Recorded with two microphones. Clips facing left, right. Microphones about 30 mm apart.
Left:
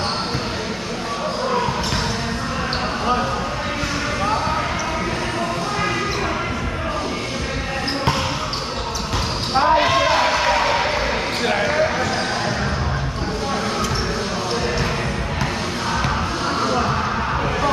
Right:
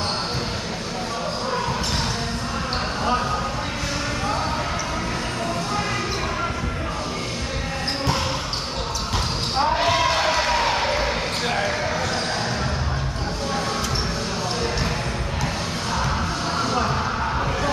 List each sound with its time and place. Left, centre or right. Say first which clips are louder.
9.6 s basketball bounce: left 4 dB; left